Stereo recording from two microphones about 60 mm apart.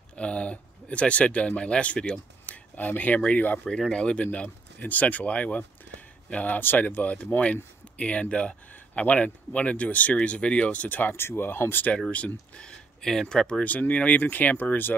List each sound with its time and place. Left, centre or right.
0.1 s speech: centre
2.4 s a sound: left
3.3 s speech: left
12.5 s speech: centre
13.7 s speech: left